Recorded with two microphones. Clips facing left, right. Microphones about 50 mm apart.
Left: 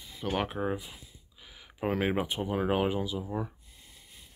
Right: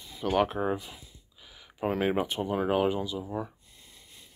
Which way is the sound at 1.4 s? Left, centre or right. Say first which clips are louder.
Left 1 dB; centre.